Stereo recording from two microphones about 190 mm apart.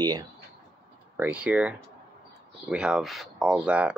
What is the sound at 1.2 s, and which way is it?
Speech, 10° right (ahead or behind).